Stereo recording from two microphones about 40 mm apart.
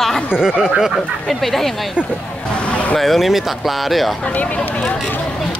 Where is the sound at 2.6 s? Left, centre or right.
Left.